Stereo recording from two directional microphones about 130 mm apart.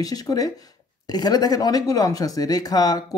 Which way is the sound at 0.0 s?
30° left (ahead or behind).